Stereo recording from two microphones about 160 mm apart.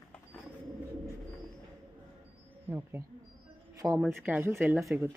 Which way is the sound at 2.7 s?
15° right (ahead or behind).